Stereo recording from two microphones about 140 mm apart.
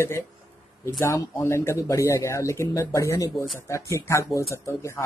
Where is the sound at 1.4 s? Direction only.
20° left (ahead or behind).